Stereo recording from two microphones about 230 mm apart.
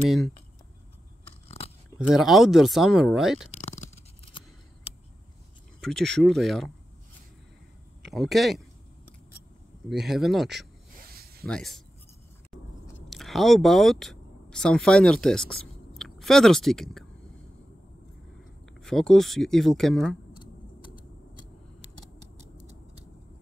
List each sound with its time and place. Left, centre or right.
2.0 s speech: centre
5.8 s speech: centre
8.0 s speech: centre
9.8 s speech: centre
11.0 s zipper: right
11.4 s speech: centre
13.1 s speech: centre
18.8 s speech: centre